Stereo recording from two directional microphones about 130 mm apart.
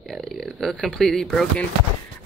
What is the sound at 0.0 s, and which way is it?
Speech, centre (ahead or behind).